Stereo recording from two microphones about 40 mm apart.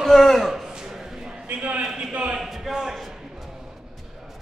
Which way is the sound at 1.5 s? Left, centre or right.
Right.